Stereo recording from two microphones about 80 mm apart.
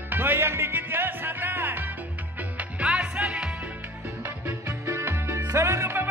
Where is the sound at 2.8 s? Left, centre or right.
Centre.